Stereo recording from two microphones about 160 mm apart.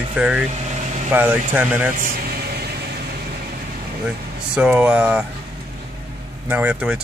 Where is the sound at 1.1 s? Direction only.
10° right (ahead or behind).